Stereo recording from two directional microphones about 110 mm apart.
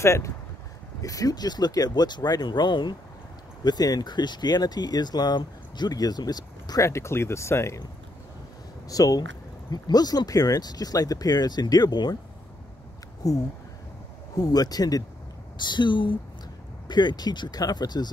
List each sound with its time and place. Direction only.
0.0 s speech: 25° left (ahead or behind)
8.8 s speech: 35° left (ahead or behind)
13.2 s speech: 35° left (ahead or behind)